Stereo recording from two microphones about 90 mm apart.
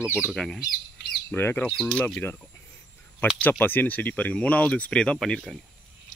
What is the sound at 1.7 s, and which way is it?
Speech, 5° left (ahead or behind).